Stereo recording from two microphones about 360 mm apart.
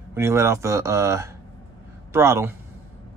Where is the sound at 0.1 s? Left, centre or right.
Centre.